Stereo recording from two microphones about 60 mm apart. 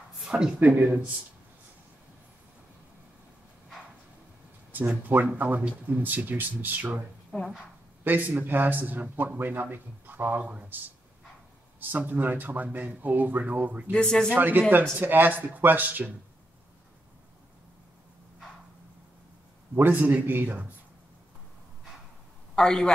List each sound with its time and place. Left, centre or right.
0.2 s speech: centre
0.6 s speech: right
4.7 s a man's voice: right
12.0 s speech: right
13.9 s speech: centre
14.3 s speech: right
19.7 s speech: right
22.6 s speech: centre